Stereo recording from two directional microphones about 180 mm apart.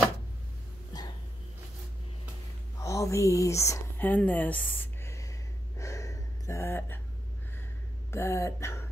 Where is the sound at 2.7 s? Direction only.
15° left (ahead or behind).